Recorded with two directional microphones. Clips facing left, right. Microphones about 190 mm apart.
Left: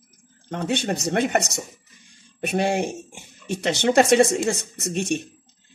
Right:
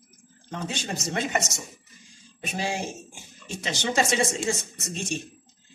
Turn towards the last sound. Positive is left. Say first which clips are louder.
# left 7 dB
turn(degrees=60)  # may be behind; listen again after turning